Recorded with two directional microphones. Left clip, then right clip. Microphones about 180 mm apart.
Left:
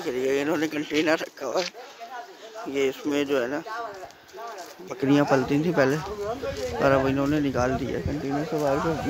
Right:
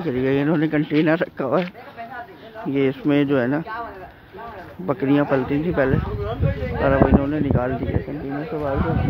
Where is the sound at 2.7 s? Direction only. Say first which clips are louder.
Right 5 dB; 10° left (ahead or behind).